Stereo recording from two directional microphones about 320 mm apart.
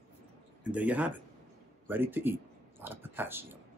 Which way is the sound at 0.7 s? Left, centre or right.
Centre.